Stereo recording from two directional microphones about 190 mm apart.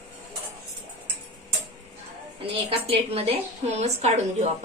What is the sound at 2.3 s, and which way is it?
A woman's voice, 30° right (ahead or behind).